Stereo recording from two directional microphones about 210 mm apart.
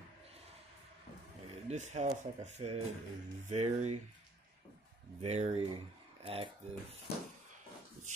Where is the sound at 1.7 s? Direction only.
35° right (ahead or behind).